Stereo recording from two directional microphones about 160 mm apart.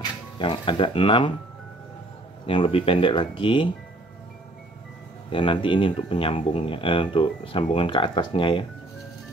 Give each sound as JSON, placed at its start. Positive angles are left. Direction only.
{"t": 0.4, "sound": "speech", "side_deg": 30}
{"t": 2.4, "sound": "speech", "side_deg": 35}
{"t": 5.3, "sound": "speech", "side_deg": 30}